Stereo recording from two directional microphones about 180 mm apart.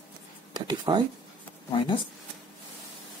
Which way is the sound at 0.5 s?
25° right (ahead or behind).